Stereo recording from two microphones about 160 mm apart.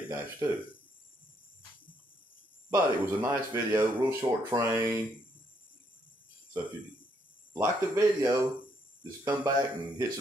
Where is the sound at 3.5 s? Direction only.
20° right (ahead or behind).